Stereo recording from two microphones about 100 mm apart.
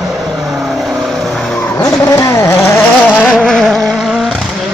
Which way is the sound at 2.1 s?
30° left (ahead or behind).